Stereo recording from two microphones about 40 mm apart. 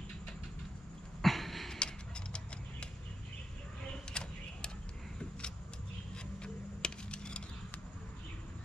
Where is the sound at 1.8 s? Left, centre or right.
Left.